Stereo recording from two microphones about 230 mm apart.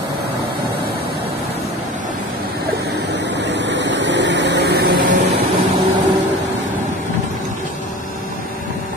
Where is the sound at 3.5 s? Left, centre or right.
Right.